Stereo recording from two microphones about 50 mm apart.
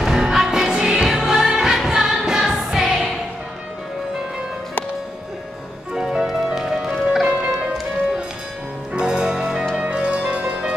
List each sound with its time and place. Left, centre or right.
0.0 s music: centre
6.0 s music: centre
7.2 s music: right
8.9 s music: centre